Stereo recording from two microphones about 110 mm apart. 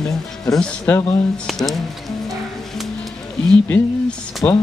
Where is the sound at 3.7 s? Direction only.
15° left (ahead or behind).